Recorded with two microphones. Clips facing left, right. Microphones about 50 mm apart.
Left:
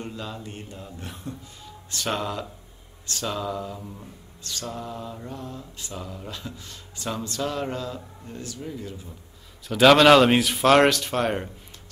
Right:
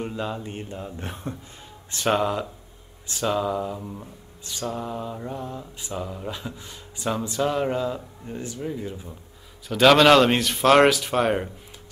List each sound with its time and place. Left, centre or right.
0.0 s speech: right
3.1 s mantra: centre
9.7 s speech: centre